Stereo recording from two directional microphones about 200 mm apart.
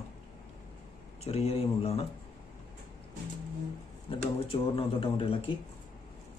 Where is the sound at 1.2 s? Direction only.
30° left (ahead or behind).